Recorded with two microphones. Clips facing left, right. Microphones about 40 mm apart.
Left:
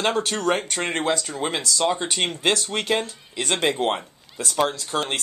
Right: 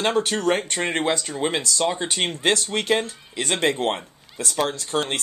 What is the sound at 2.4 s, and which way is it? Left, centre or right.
Speech, centre.